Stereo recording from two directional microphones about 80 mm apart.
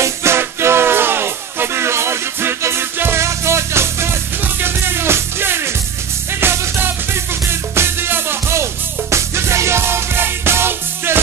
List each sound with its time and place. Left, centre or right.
0.0 s music: right